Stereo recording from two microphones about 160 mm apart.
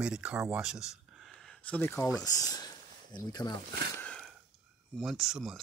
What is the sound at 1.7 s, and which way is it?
Speech, 10° left (ahead or behind).